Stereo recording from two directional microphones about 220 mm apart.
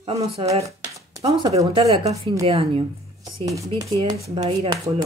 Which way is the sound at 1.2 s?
25° right (ahead or behind).